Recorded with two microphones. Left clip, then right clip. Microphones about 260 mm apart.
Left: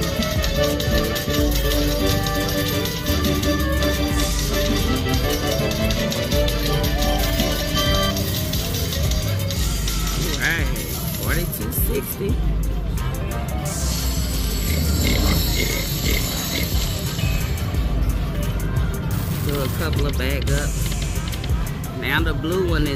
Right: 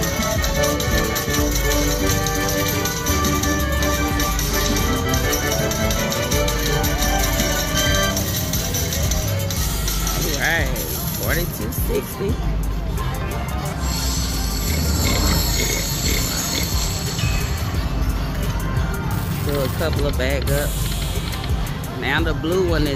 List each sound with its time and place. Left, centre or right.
0.0 s music: centre
15.0 s a sound: centre
19.8 s speech: centre
22.0 s speech: centre